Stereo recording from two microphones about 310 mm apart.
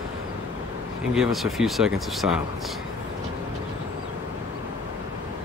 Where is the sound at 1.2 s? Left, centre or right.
Centre.